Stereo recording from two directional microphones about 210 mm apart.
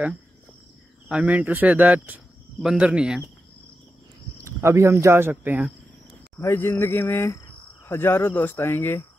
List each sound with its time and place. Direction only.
1.0 s speech: 5° right (ahead or behind)
4.4 s speech: 15° right (ahead or behind)
6.3 s speech: 10° left (ahead or behind)